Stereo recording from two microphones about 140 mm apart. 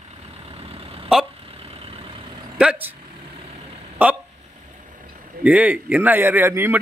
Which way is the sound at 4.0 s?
10° right (ahead or behind).